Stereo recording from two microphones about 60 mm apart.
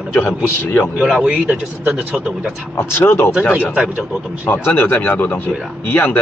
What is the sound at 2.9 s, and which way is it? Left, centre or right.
Speech, left.